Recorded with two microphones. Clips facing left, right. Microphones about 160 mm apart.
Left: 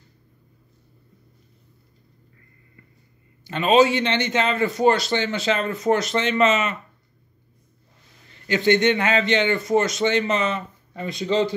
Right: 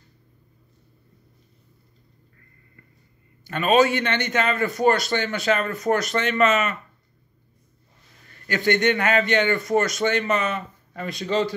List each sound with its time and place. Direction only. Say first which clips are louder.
3.4 s a man's voice: left 2 dB; 20° left (ahead or behind)
8.3 s a man's voice: left 3 dB; 20° left (ahead or behind)